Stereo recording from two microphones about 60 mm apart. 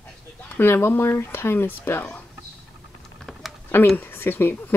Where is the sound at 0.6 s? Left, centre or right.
Left.